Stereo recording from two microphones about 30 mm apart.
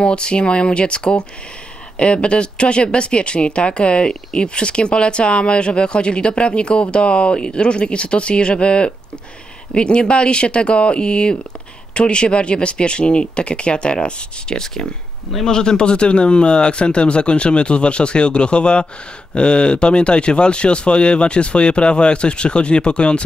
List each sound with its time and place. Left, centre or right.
0.0 s speech: left